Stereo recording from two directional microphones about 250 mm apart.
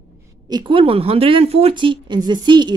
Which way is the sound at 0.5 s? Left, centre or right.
Centre.